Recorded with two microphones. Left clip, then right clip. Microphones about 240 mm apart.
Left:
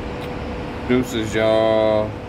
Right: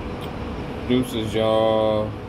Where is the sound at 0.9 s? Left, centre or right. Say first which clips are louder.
Left 3 dB; left.